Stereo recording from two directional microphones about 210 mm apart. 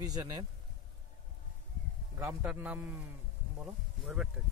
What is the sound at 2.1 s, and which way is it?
Speech, 10° right (ahead or behind).